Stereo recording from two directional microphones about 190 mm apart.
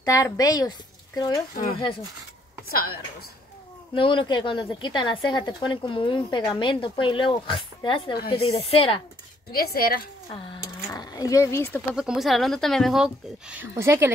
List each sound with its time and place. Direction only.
0.0 s a woman's voice: 20° left (ahead or behind)
2.7 s speech: 55° left (ahead or behind)
3.9 s a woman's voice: 25° left (ahead or behind)
9.5 s speech: 50° left (ahead or behind)
10.9 s speech: 20° left (ahead or behind)
11.9 s speech: 5° right (ahead or behind)